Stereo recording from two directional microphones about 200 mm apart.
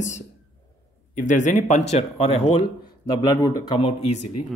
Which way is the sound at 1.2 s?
40° left (ahead or behind).